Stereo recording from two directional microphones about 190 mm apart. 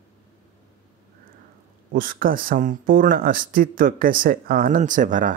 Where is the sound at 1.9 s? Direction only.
50° right (ahead or behind).